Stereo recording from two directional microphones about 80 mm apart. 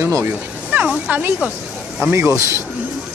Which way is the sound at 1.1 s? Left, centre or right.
Right.